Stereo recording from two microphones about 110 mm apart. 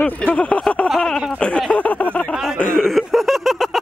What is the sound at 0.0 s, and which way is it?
Speech, 15° left (ahead or behind).